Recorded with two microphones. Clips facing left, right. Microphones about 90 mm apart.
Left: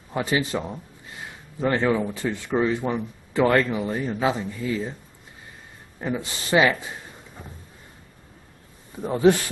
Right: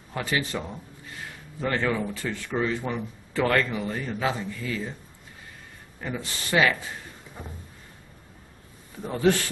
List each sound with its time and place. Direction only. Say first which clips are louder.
0.1 s speech: left 4 dB; 20° left (ahead or behind)
5.9 s speech: left 5 dB; 20° left (ahead or behind)
8.9 s speech: left 5 dB; 20° left (ahead or behind)